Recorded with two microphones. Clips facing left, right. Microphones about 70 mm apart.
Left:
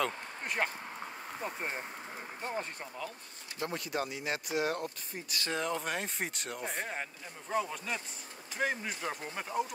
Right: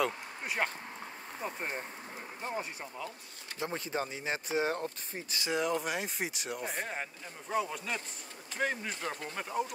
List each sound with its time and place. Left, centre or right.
0.0 s speech: centre
2.4 s speech: centre
3.5 s speech: right
5.4 s speech: centre